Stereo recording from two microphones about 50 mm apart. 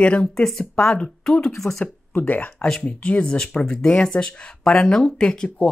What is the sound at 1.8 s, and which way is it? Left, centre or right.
Speech, left.